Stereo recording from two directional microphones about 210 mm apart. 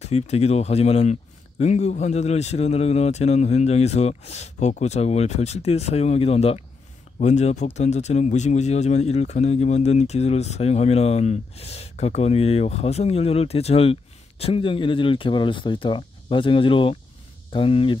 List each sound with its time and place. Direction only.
0.0 s speech: 30° left (ahead or behind)